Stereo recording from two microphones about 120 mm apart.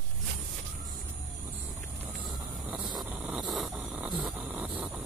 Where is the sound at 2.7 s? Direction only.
5° right (ahead or behind).